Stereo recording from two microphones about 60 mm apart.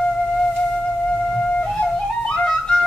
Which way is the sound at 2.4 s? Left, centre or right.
Centre.